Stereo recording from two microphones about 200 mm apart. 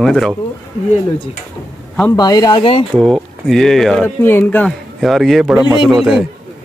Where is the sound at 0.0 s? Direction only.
Centre (ahead or behind).